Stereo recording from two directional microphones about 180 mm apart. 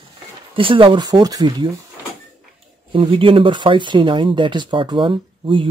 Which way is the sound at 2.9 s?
30° right (ahead or behind).